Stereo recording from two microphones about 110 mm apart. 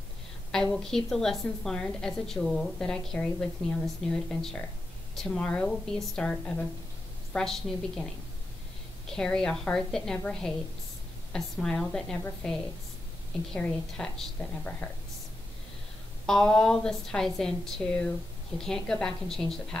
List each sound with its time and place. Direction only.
0.7 s a woman's voice: 5° left (ahead or behind)
16.3 s a woman's voice: 5° left (ahead or behind)